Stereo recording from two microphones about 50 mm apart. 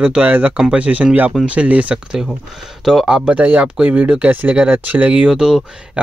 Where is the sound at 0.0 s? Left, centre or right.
Right.